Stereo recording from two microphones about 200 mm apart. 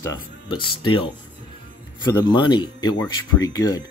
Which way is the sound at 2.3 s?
20° left (ahead or behind).